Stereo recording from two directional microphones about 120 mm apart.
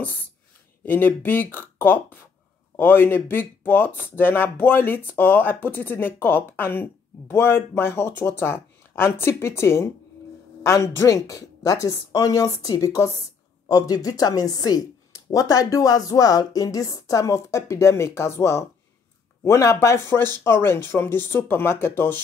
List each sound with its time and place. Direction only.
0.8 s speech: 15° left (ahead or behind)